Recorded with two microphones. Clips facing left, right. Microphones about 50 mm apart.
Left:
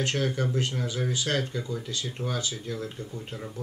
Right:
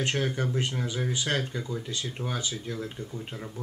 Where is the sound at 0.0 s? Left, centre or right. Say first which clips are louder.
Left 1 dB; centre.